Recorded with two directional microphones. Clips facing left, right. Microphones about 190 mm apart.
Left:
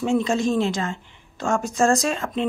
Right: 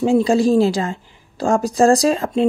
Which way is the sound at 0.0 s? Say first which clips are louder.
Right 6 dB; 35° right (ahead or behind).